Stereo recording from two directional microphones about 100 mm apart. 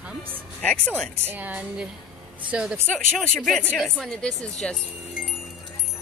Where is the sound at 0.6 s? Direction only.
10° left (ahead or behind).